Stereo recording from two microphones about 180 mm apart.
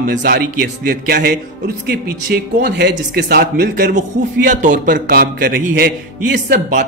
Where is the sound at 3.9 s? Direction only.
45° right (ahead or behind).